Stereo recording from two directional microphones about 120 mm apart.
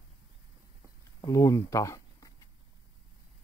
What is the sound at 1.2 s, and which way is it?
Speech, 25° left (ahead or behind).